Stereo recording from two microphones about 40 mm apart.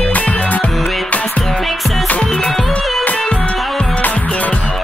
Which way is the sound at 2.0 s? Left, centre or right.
Left.